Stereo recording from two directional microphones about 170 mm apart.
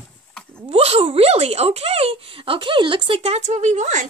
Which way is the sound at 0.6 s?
35° right (ahead or behind).